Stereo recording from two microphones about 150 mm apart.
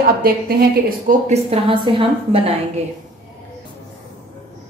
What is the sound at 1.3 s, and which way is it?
A woman's voice, 40° right (ahead or behind).